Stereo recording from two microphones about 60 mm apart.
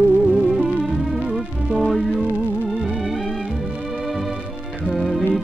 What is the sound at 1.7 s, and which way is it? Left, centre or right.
Music, centre.